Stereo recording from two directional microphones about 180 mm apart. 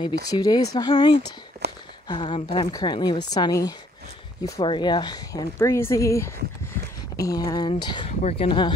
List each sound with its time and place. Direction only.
0.0 s speech: 20° left (ahead or behind)
1.6 s a sound: 65° right (ahead or behind)
2.0 s speech: 25° left (ahead or behind)
8.1 s speech: 35° left (ahead or behind)